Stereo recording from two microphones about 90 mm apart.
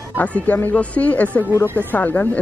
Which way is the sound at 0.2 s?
15° left (ahead or behind).